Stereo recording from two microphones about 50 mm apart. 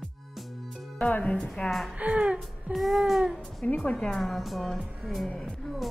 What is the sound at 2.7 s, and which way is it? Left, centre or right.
Speech, centre.